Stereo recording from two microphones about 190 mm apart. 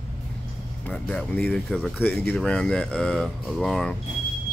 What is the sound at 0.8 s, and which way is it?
Speech, 5° left (ahead or behind).